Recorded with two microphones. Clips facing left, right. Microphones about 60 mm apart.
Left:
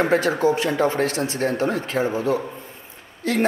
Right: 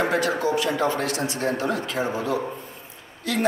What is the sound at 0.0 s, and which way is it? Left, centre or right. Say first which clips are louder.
A man's voice: left 4 dB; left.